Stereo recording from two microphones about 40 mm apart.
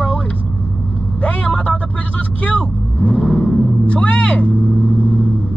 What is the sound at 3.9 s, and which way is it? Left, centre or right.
Speech, left.